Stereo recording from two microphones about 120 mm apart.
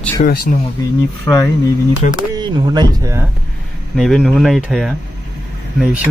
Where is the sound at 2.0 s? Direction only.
90° left.